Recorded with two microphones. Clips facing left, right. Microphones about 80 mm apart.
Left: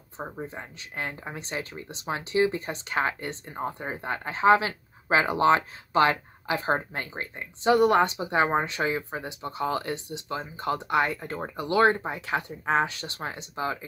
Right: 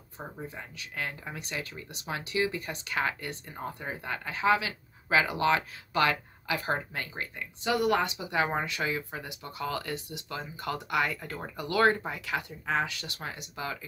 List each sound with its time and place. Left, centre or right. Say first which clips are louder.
0.2 s speech: left 5 dB; left